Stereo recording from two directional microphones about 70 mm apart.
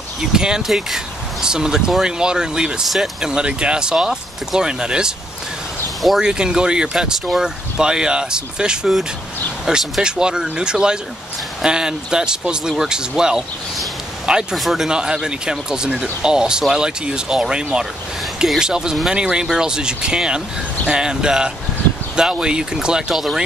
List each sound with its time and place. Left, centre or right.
0.3 s speech: centre